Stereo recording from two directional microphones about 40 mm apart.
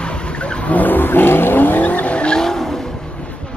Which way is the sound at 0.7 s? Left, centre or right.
Left.